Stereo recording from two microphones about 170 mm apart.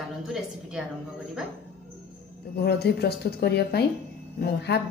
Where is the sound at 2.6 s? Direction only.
70° left (ahead or behind).